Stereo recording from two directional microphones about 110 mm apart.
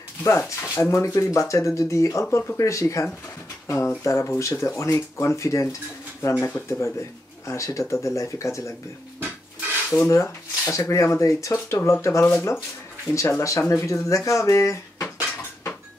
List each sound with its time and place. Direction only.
0.2 s speech: 25° left (ahead or behind)
9.8 s speech: 25° left (ahead or behind)